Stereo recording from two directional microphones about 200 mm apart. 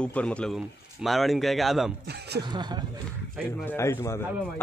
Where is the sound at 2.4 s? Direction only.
20° right (ahead or behind).